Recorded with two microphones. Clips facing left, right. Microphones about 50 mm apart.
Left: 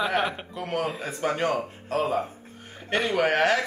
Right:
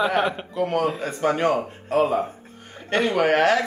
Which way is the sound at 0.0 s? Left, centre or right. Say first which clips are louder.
Right 4 dB; centre.